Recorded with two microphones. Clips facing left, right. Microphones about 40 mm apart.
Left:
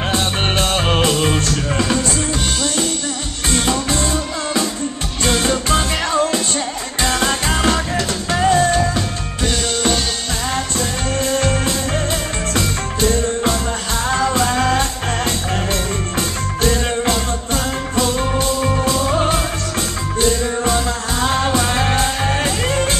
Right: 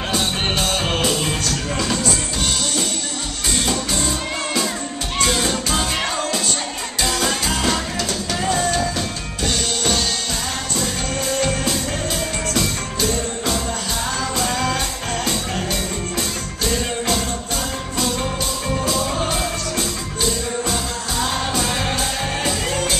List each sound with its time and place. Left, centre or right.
0.1 s music: left
3.6 s music: left
7.0 s music: left
10.8 s music: left
18.8 s music: left